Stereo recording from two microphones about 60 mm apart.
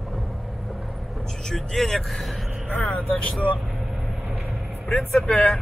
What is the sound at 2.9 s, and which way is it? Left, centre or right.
Speech, left.